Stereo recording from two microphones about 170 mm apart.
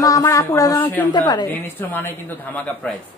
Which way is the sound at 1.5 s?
10° left (ahead or behind).